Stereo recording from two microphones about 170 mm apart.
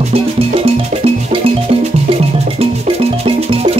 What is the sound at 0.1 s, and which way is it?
Music, 35° right (ahead or behind).